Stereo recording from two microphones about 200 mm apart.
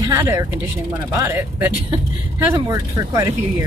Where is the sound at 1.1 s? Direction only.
10° right (ahead or behind).